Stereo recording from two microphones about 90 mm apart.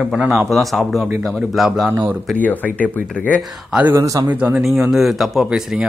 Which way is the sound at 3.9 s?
40° right (ahead or behind).